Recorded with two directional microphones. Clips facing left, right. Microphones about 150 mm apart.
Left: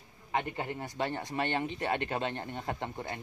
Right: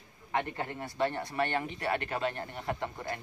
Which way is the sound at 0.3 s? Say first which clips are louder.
Even; 15° left (ahead or behind).